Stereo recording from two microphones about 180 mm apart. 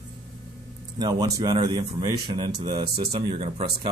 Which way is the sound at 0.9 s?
20° right (ahead or behind).